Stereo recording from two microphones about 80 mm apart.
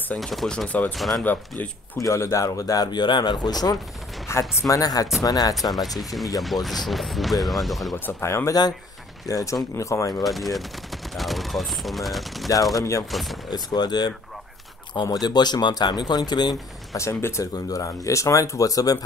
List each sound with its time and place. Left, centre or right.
0.2 s speech: centre
0.7 s speech: left
0.9 s speech: centre
2.0 s speech: left
2.9 s speech: left
4.3 s speech: left
6.4 s speech: centre
8.0 s speech: left
9.3 s speech: left
10.2 s speech: centre
12.7 s speech: left
13.1 s speech: centre
13.5 s speech: left
16.9 s speech: left